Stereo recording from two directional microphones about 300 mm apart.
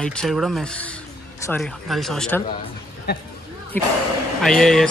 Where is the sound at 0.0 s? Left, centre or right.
Centre.